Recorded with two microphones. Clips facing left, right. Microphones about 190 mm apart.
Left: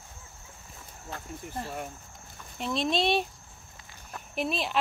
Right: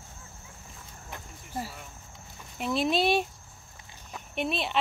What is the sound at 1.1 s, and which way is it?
Speech, 15° right (ahead or behind).